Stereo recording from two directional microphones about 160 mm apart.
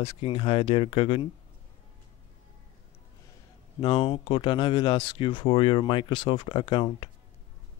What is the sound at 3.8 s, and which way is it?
Speech, 35° left (ahead or behind).